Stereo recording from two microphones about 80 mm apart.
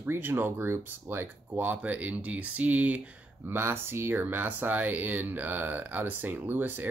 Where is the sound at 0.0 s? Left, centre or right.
Right.